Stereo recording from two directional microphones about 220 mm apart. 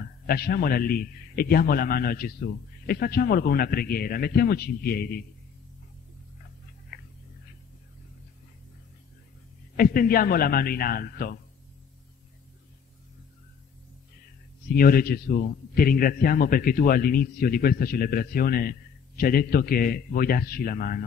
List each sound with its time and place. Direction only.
0.0 s a man's voice: 45° left (ahead or behind)
6.9 s a sound: 45° left (ahead or behind)
9.8 s a man's voice: 40° left (ahead or behind)
14.7 s a man's voice: 40° left (ahead or behind)